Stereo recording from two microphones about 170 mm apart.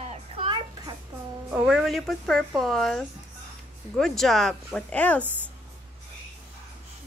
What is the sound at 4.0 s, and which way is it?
Speech, centre (ahead or behind).